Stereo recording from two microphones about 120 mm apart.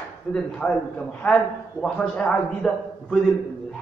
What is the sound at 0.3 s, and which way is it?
A man's voice, 10° left (ahead or behind).